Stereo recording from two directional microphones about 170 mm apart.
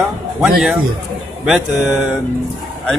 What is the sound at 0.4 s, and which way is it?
Speech, centre (ahead or behind).